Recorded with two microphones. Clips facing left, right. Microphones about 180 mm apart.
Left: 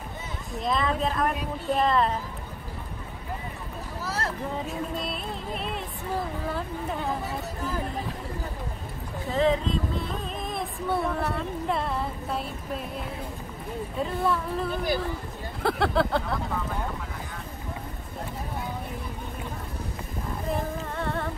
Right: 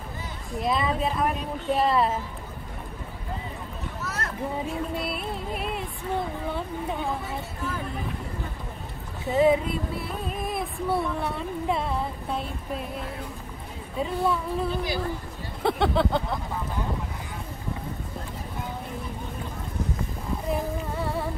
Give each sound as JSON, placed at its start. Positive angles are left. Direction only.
{"t": 0.6, "sound": "music", "side_deg": -5}
{"t": 4.0, "sound": "a sound", "side_deg": 30}
{"t": 4.9, "sound": "music", "side_deg": -5}
{"t": 9.3, "sound": "music", "side_deg": -10}
{"t": 13.9, "sound": "music", "side_deg": 0}
{"t": 15.6, "sound": "speech", "side_deg": 0}
{"t": 20.4, "sound": "music", "side_deg": -5}